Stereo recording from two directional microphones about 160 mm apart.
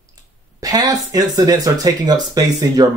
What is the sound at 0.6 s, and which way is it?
Speech, 25° right (ahead or behind).